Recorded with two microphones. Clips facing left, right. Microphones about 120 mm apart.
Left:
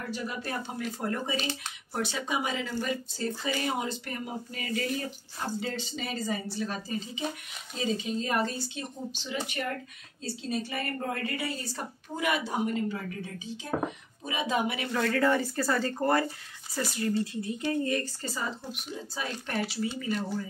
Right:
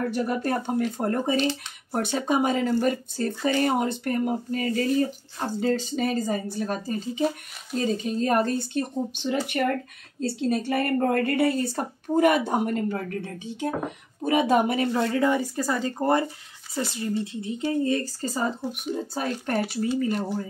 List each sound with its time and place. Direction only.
0.1 s speech: 50° right (ahead or behind)
14.9 s speech: 20° right (ahead or behind)
18.2 s speech: 40° right (ahead or behind)